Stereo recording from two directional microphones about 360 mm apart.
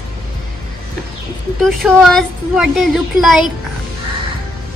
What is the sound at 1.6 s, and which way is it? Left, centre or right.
A woman's voice, centre.